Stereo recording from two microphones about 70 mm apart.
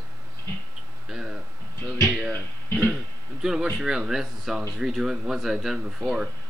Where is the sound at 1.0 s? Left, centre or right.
Centre.